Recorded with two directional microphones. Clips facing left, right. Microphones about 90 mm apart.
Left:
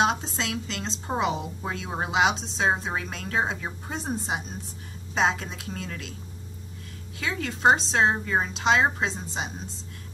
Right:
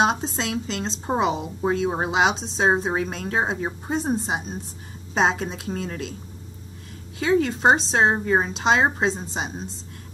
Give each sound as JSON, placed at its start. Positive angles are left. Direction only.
{"t": 0.0, "sound": "speech", "side_deg": -35}
{"t": 7.2, "sound": "speech", "side_deg": -35}